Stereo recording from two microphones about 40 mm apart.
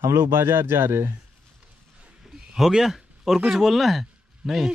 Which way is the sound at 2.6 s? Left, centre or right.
Centre.